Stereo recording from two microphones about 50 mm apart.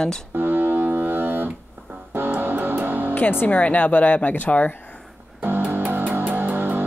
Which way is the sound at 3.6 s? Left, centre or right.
Left.